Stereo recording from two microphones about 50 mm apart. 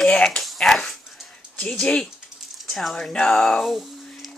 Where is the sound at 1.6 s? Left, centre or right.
Centre.